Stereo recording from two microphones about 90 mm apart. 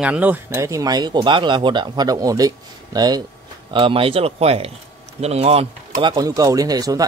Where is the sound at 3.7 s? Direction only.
75° right (ahead or behind); by 6.1 s 90° right.